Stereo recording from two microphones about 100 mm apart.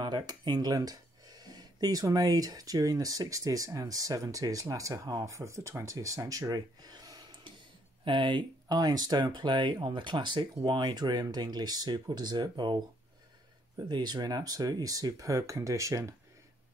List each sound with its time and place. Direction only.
0.0 s speech: 45° right (ahead or behind)
8.0 s speech: 55° right (ahead or behind)
8.6 s speech: 40° right (ahead or behind)